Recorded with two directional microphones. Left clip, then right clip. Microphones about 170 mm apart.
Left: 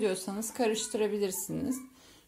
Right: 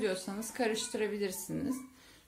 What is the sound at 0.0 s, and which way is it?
A woman's voice, 25° left (ahead or behind).